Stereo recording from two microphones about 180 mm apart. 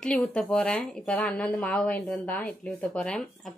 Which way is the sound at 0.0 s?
5° left (ahead or behind).